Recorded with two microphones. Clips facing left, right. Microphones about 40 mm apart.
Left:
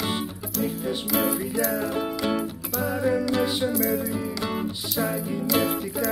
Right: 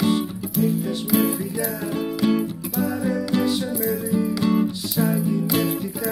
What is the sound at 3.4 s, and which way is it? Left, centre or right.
Music, centre.